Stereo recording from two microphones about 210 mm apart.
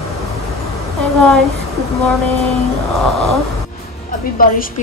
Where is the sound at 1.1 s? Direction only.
Centre (ahead or behind).